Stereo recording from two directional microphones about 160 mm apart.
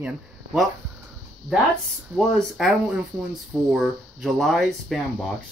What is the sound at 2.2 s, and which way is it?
Speech, centre (ahead or behind).